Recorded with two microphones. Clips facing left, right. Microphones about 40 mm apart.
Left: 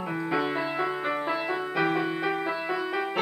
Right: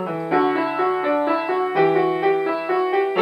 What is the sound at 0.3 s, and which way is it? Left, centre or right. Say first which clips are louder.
Music: right 10 dB; centre.